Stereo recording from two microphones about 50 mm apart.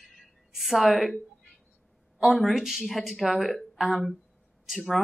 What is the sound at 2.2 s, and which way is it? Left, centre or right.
Speech, centre.